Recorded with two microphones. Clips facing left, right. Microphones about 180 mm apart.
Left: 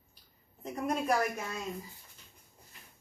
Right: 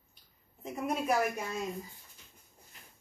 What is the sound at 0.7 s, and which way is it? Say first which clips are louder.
Speech: left 1 dB; 5° right (ahead or behind).